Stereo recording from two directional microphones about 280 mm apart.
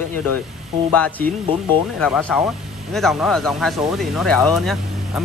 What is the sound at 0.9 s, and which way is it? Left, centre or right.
Speech, centre.